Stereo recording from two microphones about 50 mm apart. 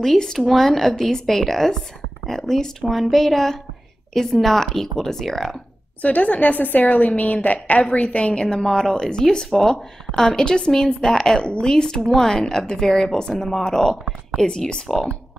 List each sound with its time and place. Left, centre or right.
0.0 s speech: centre
6.0 s a woman's voice: left
14.9 s speech: centre